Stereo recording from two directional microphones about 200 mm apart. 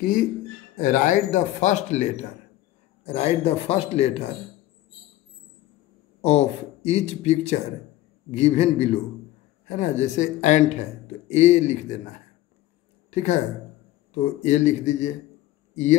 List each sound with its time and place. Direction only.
0.0 s speech: 45° left (ahead or behind)
6.2 s speech: 30° left (ahead or behind)
13.1 s speech: 35° left (ahead or behind)